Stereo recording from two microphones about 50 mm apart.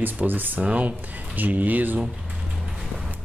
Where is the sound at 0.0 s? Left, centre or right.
Right.